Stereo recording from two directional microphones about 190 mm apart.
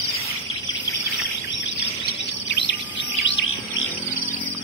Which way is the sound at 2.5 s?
70° left (ahead or behind).